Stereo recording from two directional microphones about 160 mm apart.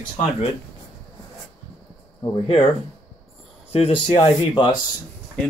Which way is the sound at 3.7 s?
40° left (ahead or behind).